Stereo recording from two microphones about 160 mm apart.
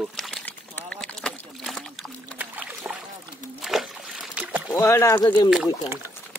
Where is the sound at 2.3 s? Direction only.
10° right (ahead or behind).